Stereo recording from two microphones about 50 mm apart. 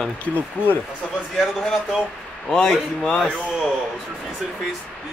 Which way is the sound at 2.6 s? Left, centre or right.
Centre.